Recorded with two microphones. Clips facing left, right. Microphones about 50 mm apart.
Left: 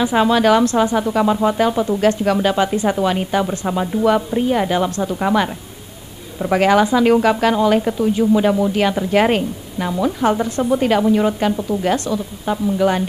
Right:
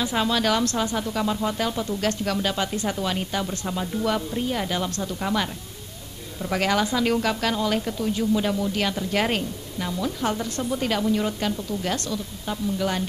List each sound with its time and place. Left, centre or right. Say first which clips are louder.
0.0 s speech: left 9 dB; centre